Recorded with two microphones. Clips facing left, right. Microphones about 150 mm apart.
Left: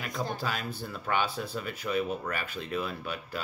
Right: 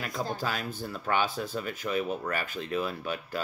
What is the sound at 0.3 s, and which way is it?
Speech, 45° right (ahead or behind).